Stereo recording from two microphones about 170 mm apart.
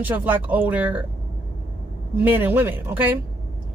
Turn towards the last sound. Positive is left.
turn(degrees=-10)  # may be behind; listen again after turning